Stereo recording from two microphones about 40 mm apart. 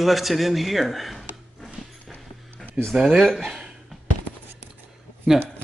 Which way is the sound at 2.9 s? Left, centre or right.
Centre.